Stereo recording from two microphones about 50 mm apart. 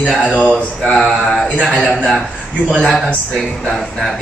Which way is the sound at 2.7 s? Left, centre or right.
Centre.